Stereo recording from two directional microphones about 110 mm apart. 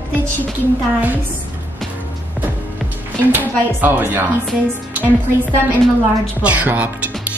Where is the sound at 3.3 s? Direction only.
15° right (ahead or behind).